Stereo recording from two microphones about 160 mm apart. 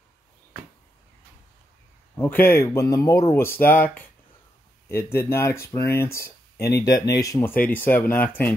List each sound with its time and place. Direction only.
2.1 s speech: 15° left (ahead or behind)